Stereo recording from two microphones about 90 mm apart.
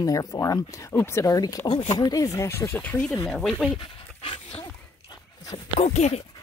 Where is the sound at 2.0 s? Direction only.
45° left (ahead or behind).